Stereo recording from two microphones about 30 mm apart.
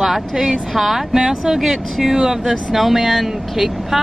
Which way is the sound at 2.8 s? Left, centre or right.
Centre.